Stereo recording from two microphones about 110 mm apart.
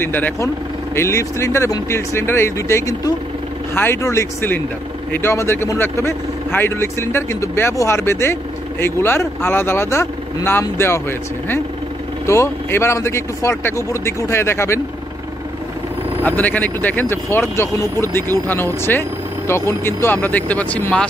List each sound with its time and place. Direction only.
0.0 s speech: 20° left (ahead or behind)
3.7 s speech: 20° left (ahead or behind)
16.3 s speech: 15° left (ahead or behind)